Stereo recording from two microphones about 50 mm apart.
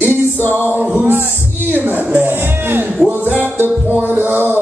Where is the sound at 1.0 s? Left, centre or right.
Right.